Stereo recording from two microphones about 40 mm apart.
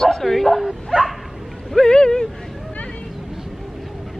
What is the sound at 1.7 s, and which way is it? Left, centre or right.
Speech, centre.